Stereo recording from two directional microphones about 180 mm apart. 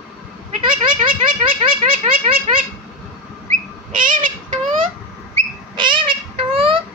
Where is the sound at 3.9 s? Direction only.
45° right (ahead or behind).